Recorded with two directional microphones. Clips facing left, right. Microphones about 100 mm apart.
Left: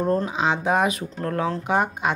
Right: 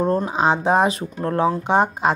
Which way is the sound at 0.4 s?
35° right (ahead or behind).